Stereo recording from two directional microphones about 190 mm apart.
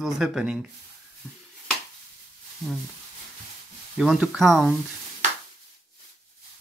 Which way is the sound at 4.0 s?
Centre (ahead or behind).